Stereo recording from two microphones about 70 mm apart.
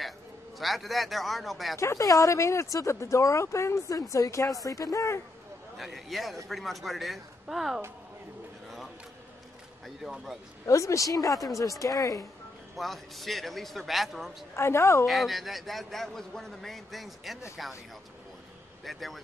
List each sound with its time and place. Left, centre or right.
0.6 s a man's voice: centre
1.8 s speech: left
5.8 s a man's voice: centre
10.7 s speech: left
12.7 s a man's voice: centre
14.5 s a woman's voice: left
15.0 s a man's voice: centre
18.9 s a man's voice: centre